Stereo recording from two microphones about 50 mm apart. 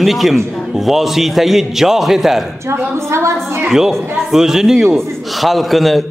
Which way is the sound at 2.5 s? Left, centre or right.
Right.